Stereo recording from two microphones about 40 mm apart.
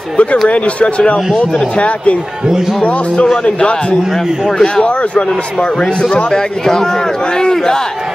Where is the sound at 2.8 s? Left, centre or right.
Left.